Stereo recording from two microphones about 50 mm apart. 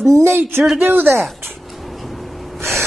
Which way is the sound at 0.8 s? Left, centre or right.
Right.